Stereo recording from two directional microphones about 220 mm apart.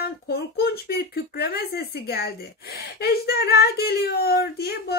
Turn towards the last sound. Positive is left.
turn(degrees=45)  # may be behind; listen again after turning